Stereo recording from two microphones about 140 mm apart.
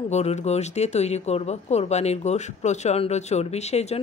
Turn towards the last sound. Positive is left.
turn(degrees=50)  # may be behind; listen again after turning